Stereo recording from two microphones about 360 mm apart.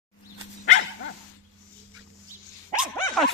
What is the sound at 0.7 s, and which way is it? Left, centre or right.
Dog, left.